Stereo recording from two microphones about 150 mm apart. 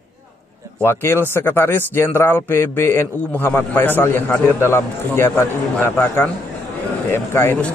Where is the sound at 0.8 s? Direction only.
15° left (ahead or behind).